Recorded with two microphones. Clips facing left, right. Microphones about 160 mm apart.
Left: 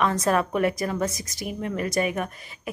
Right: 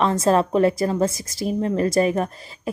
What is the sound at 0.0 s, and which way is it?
A woman's voice, 30° right (ahead or behind).